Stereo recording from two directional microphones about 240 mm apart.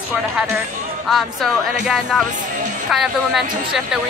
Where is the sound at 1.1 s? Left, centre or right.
Centre.